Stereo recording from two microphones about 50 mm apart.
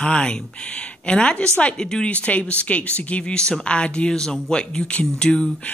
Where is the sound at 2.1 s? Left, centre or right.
Left.